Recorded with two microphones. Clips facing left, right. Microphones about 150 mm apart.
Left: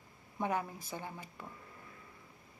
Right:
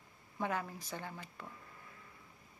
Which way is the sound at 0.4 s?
15° left (ahead or behind).